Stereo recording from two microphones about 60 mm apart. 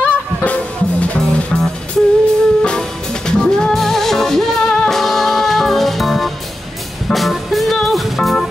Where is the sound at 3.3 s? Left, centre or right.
Centre.